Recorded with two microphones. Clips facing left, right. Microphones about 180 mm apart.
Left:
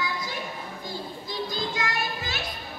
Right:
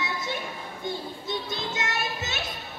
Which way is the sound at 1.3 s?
25° right (ahead or behind).